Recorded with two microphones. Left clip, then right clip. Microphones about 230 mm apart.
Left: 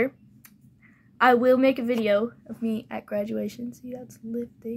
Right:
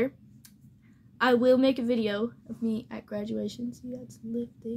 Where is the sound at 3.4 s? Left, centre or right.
Left.